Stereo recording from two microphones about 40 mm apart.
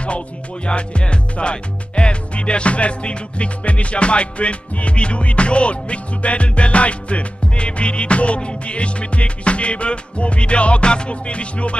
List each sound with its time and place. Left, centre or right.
0.7 s music: left